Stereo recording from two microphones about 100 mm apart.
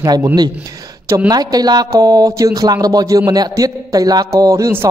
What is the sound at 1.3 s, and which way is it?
A man's voice, 40° right (ahead or behind).